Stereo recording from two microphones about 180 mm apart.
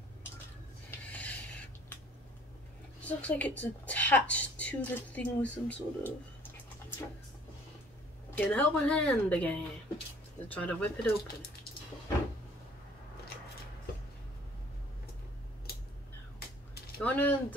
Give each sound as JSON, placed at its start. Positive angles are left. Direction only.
{"t": 0.8, "sound": "a sound", "side_deg": 10}
{"t": 3.0, "sound": "speech", "side_deg": 10}
{"t": 8.4, "sound": "speech", "side_deg": 5}
{"t": 17.0, "sound": "speech", "side_deg": 10}